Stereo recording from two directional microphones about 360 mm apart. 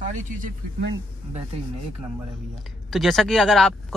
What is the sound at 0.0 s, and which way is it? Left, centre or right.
Speech, right.